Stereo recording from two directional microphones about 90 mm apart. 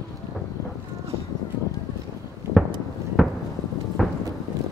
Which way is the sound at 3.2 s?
10° right (ahead or behind).